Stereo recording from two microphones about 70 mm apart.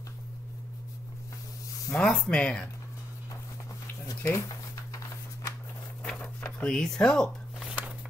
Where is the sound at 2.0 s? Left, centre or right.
Centre.